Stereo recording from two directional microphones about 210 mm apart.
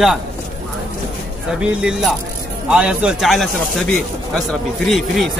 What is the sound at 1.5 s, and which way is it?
Speech, 5° right (ahead or behind).